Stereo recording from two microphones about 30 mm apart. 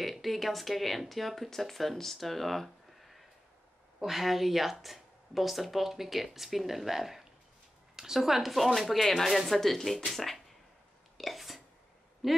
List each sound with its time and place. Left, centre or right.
0.0 s a woman's voice: centre
11.1 s whispering: centre
12.2 s a man's voice: centre